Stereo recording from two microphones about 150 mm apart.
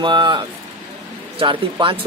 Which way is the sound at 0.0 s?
30° right (ahead or behind).